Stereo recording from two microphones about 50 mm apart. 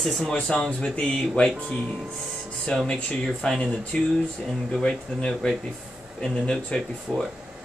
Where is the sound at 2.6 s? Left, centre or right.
Centre.